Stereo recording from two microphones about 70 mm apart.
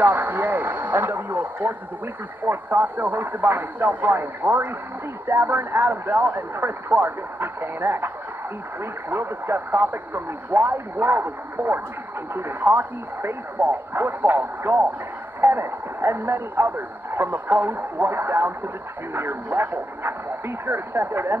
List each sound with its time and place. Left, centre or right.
0.0 s speech: right
9.1 s speech: right